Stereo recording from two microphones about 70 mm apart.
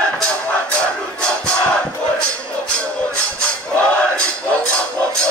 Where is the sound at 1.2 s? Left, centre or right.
Centre.